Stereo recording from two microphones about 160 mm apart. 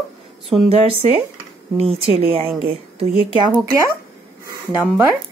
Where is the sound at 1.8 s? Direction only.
40° right (ahead or behind).